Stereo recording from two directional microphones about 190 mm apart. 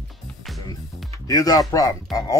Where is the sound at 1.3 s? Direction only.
20° left (ahead or behind).